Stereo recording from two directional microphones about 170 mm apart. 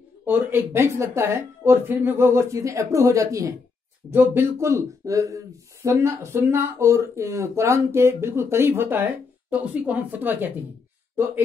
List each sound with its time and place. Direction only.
0.2 s speech: 10° right (ahead or behind)